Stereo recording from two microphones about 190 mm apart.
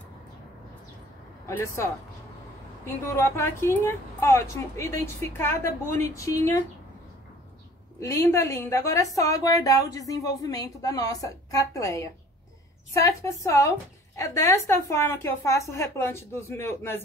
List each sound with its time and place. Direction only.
1.4 s a sound: 15° left (ahead or behind)
2.8 s a woman's voice: 15° left (ahead or behind)
8.0 s a woman's voice: 15° left (ahead or behind)